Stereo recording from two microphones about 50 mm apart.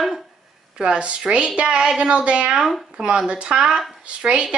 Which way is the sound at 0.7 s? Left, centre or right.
Centre.